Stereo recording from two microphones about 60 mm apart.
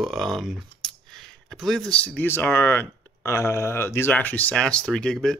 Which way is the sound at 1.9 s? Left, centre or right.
Centre.